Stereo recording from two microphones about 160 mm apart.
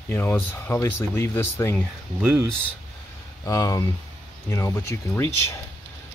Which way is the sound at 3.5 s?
20° left (ahead or behind).